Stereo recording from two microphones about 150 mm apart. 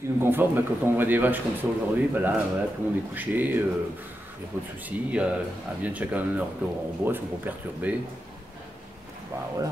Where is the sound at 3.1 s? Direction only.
10° right (ahead or behind).